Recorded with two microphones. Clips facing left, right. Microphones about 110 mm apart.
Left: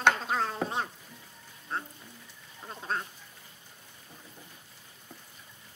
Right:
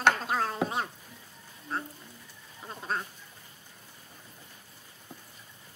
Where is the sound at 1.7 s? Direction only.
5° right (ahead or behind).